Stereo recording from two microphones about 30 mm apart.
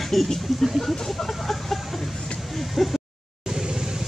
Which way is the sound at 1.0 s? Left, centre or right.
Centre.